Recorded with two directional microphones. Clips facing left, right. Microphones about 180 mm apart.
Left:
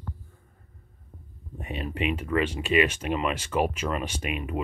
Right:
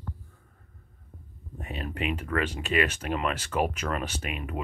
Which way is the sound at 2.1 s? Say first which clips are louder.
Left 3 dB; 10° left (ahead or behind).